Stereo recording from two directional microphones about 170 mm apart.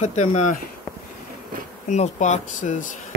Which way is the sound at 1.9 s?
45° left (ahead or behind).